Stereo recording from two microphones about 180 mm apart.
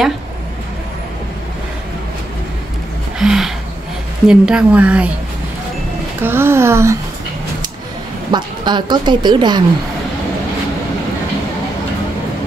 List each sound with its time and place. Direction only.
3.2 s a sound: centre (ahead or behind)
4.3 s speech: 5° right (ahead or behind)
6.2 s speech: 15° right (ahead or behind)
8.3 s speech: 25° right (ahead or behind)